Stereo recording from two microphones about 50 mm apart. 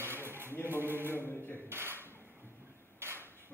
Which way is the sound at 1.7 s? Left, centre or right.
Right.